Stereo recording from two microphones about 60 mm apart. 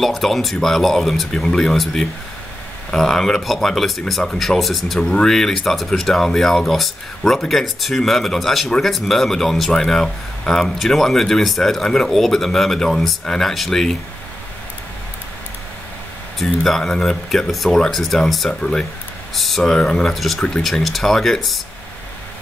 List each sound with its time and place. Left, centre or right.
0.0 s speech: centre
16.3 s speech: centre
19.3 s speech: centre